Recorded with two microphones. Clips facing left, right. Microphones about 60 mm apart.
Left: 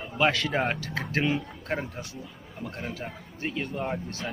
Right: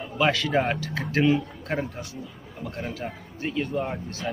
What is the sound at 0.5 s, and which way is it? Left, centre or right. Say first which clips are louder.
Speech: right 3 dB; centre.